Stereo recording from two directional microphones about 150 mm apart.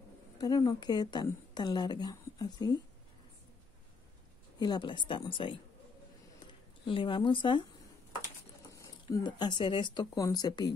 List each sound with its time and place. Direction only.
0.4 s a woman's voice: 25° left (ahead or behind)
4.6 s speech: 30° left (ahead or behind)
8.7 s a woman's voice: 20° left (ahead or behind)